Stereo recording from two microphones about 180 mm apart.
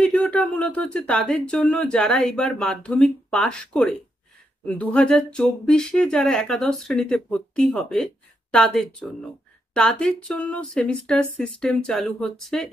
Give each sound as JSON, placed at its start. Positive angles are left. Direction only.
{"t": 0.0, "sound": "speech", "side_deg": 5}